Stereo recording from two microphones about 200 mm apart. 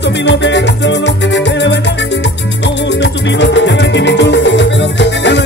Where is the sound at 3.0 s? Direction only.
60° left (ahead or behind).